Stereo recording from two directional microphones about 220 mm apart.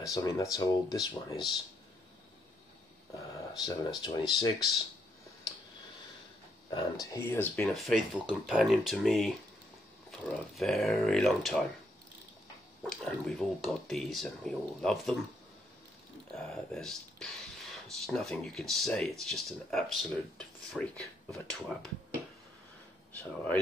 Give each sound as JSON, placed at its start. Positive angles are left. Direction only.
{"t": 0.0, "sound": "speech", "side_deg": 15}
{"t": 4.0, "sound": "speech", "side_deg": 20}
{"t": 6.7, "sound": "speech", "side_deg": 20}
{"t": 12.9, "sound": "speech", "side_deg": 5}
{"t": 16.3, "sound": "speech", "side_deg": 0}
{"t": 23.1, "sound": "speech", "side_deg": 5}